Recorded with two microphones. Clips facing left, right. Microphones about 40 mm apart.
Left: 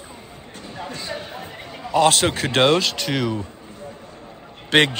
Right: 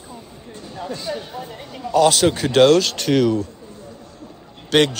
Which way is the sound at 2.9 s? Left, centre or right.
Centre.